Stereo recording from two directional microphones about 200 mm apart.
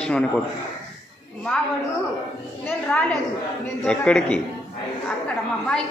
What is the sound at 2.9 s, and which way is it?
A woman's voice, 5° left (ahead or behind).